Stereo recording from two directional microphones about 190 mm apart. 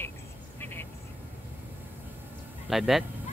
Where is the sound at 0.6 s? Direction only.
10° left (ahead or behind).